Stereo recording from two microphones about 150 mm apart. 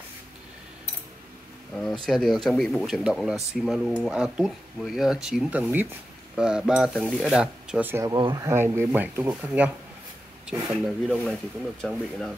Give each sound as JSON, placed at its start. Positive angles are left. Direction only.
{"t": 2.0, "sound": "speech", "side_deg": 0}
{"t": 7.9, "sound": "speech", "side_deg": -25}
{"t": 8.5, "sound": "speech", "side_deg": -15}